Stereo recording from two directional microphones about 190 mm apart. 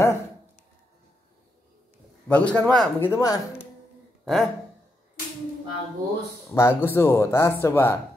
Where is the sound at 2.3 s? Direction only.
5° left (ahead or behind).